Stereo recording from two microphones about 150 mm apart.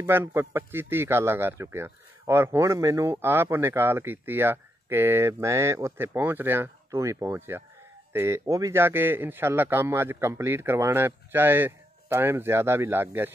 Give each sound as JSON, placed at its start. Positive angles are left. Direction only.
{"t": 0.0, "sound": "speech", "side_deg": -15}